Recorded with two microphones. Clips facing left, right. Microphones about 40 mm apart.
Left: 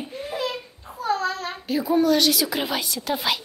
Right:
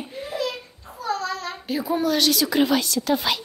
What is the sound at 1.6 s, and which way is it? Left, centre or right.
A woman's voice, centre.